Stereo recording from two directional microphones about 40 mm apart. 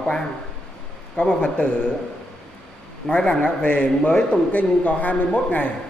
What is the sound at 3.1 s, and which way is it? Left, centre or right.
A woman's voice, left.